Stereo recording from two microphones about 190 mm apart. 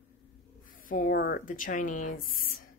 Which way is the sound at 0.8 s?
45° left (ahead or behind).